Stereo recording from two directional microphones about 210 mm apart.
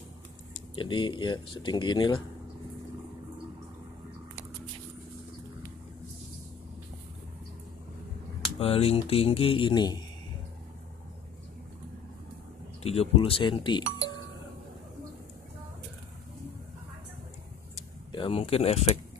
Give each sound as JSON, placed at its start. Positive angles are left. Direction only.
{"t": 0.7, "sound": "speech", "side_deg": 25}
{"t": 8.5, "sound": "speech", "side_deg": 30}
{"t": 12.8, "sound": "speech", "side_deg": 30}
{"t": 18.1, "sound": "speech", "side_deg": 25}